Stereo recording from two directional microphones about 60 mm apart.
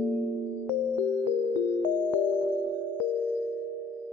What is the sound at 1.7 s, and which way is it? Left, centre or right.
Music, left.